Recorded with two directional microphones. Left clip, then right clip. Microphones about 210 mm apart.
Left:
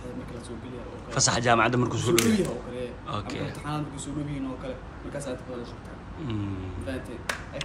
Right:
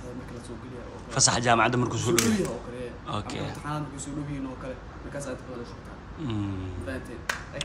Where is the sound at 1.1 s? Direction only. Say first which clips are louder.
Even; 15° right (ahead or behind).